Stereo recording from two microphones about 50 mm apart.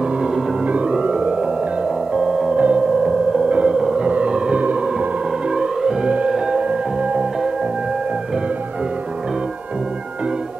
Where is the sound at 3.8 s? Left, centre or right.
Centre.